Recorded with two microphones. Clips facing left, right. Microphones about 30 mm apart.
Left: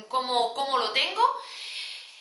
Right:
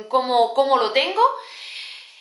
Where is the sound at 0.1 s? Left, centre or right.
Centre.